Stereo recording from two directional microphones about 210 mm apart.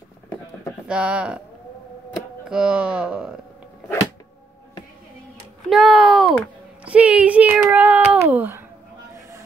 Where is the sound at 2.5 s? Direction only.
5° right (ahead or behind).